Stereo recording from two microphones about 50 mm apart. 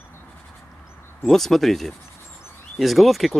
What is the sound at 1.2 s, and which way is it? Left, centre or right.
Speech, centre.